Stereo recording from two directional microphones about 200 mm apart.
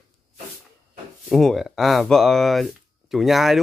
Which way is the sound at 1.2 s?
Centre (ahead or behind).